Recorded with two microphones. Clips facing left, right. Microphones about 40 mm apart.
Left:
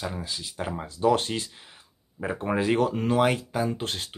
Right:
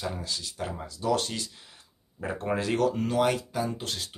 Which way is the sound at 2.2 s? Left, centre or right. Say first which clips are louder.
Left 3 dB; centre.